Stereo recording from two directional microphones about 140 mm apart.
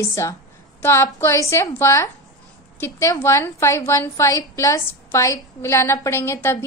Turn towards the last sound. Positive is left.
turn(degrees=20)  # may be behind; listen again after turning